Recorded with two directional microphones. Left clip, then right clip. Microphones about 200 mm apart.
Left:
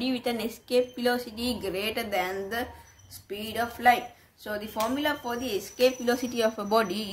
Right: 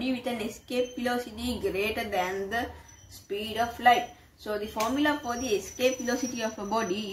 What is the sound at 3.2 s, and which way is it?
A woman's voice, 30° left (ahead or behind).